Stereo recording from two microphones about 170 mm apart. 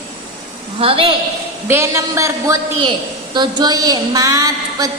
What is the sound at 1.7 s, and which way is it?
A woman's voice, 15° right (ahead or behind).